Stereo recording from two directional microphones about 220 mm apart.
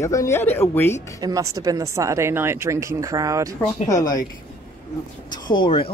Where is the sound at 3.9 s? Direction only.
15° left (ahead or behind).